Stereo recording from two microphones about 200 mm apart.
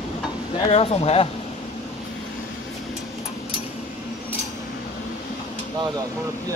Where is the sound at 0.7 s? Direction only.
30° left (ahead or behind).